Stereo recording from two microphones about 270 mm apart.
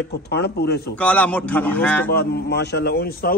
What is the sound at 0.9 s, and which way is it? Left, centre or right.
A man's voice, centre.